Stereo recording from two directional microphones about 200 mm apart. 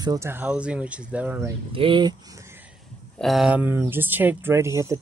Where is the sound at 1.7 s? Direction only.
25° right (ahead or behind).